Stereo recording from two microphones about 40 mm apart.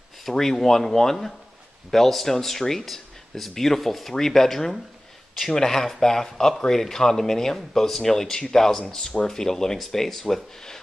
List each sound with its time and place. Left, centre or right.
0.2 s speech: centre